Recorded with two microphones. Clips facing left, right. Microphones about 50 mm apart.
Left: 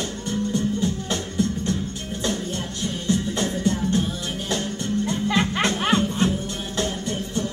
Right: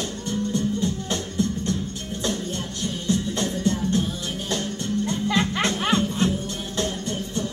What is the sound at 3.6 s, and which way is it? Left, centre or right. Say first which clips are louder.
Music: even; centre.